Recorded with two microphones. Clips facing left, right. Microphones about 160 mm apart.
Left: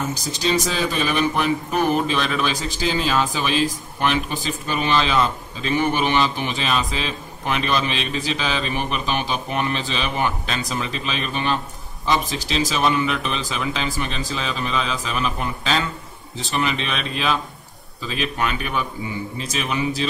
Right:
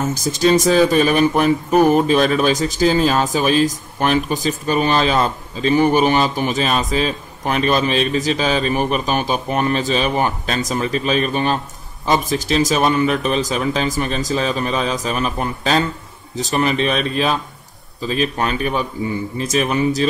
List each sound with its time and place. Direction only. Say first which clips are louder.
0.1 s speech: right 7 dB; 45° right (ahead or behind)